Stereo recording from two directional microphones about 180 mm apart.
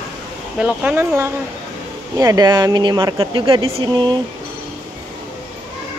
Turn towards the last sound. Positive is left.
turn(degrees=-25)  # may be behind; listen again after turning